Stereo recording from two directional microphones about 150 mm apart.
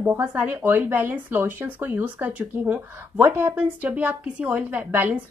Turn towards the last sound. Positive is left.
turn(degrees=-10)  # may be behind; listen again after turning